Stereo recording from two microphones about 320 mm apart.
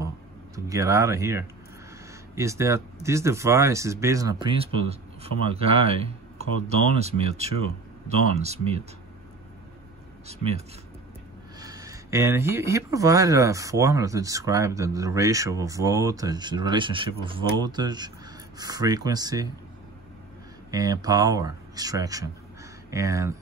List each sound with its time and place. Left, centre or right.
0.7 s speech: centre
7.0 s speech: centre
10.2 s speech: centre
11.6 s speech: centre
20.7 s speech: centre